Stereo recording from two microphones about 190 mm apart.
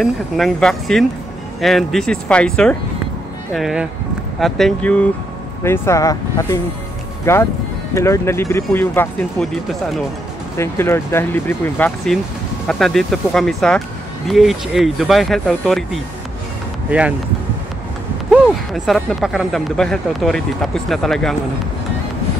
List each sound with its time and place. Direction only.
0.0 s speech: centre (ahead or behind)
10.6 s speech: 15° left (ahead or behind)
18.3 s speech: centre (ahead or behind)